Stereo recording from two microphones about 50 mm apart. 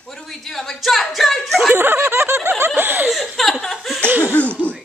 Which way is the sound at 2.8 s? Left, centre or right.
Right.